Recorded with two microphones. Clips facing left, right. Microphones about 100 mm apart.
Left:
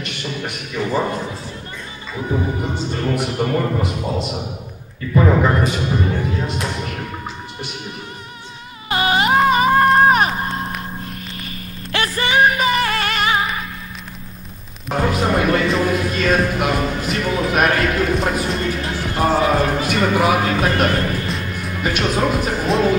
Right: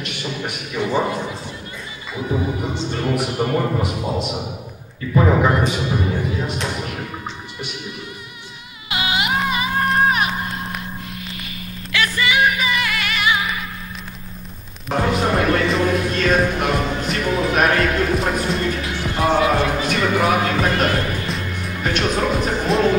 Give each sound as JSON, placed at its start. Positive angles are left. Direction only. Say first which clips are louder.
{"t": 0.0, "sound": "speech", "louder": "even", "side_deg": -5}
{"t": 2.7, "sound": "speech", "louder": "even", "side_deg": 5}
{"t": 8.8, "sound": "music", "louder": "left 5 dB", "side_deg": 40}
{"t": 12.0, "sound": "music", "louder": "left 2 dB", "side_deg": 35}
{"t": 14.9, "sound": "music", "louder": "even", "side_deg": 0}
{"t": 19.8, "sound": "speech", "louder": "left 2 dB", "side_deg": 0}
{"t": 21.3, "sound": "music", "louder": "left 1 dB", "side_deg": 0}
{"t": 21.8, "sound": "speech", "louder": "left 1 dB", "side_deg": 5}